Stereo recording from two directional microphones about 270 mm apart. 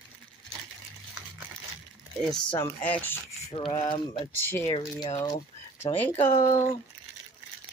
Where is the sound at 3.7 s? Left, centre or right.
Centre.